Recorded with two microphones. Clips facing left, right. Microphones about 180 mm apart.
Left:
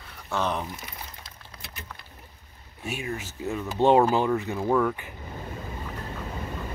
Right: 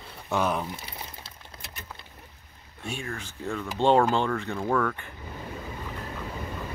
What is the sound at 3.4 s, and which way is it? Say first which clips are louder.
Speech: left 2 dB; 10° left (ahead or behind).